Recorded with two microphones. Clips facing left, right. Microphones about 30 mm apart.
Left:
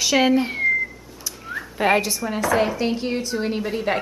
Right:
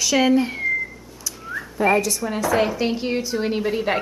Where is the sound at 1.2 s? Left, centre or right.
Centre.